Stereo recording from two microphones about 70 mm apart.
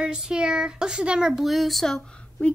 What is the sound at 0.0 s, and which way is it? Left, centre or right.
Speech, centre.